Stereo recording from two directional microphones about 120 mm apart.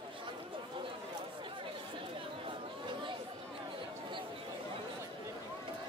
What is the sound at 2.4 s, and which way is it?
Chatter, 45° right (ahead or behind).